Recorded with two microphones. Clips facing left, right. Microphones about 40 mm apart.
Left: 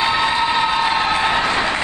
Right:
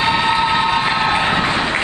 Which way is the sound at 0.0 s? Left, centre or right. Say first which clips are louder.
Right 2 dB; centre.